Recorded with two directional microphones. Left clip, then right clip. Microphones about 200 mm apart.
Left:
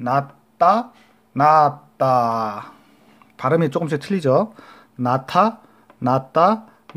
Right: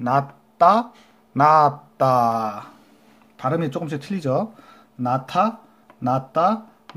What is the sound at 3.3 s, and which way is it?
Speech, 30° left (ahead or behind).